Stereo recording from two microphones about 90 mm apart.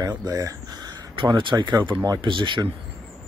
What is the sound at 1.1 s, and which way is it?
Speech, 60° right (ahead or behind).